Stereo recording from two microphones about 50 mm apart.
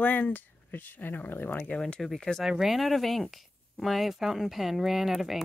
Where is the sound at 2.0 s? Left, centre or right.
Centre.